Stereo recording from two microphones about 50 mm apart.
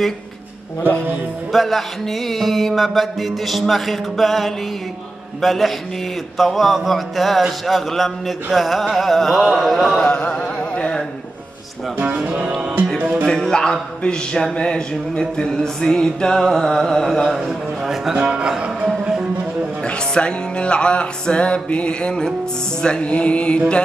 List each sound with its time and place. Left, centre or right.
1.5 s a sound: centre
9.7 s music: centre
13.3 s a sound: centre
17.5 s speech: centre
18.9 s music: centre
19.8 s music: left